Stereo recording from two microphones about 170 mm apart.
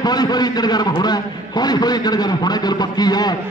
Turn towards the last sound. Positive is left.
turn(degrees=25)  # may be behind; listen again after turning